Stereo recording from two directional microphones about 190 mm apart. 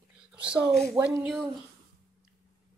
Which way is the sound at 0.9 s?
10° right (ahead or behind).